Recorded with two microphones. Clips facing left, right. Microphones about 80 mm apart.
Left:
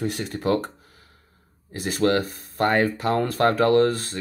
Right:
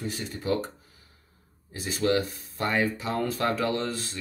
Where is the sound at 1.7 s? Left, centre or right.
Left.